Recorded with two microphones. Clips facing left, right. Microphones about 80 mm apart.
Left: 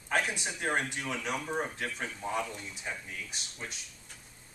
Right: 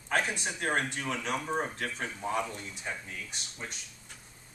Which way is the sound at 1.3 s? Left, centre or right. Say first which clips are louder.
Right 2 dB; centre.